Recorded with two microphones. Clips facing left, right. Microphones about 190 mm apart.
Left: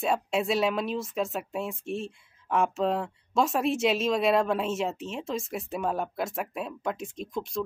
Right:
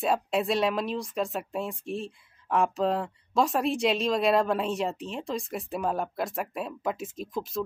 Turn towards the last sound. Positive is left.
turn(degrees=0)  # may be behind; listen again after turning